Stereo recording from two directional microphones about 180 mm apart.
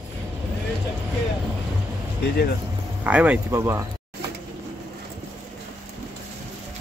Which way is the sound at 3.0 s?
5° right (ahead or behind).